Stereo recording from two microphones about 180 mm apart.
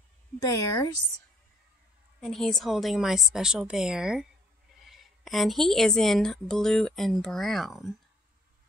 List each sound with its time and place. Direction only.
0.4 s speech: 20° left (ahead or behind)
2.1 s a woman's voice: centre (ahead or behind)